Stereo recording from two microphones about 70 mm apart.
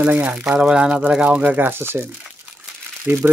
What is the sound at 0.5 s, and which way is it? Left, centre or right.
Speech, centre.